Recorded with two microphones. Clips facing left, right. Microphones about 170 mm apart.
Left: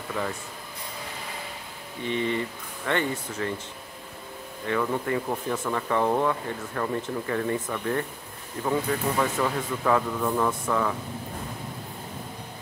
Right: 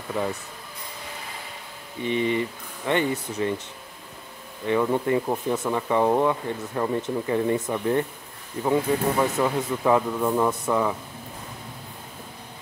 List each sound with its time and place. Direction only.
2.0 s speech: 15° right (ahead or behind)
4.6 s speech: 20° right (ahead or behind)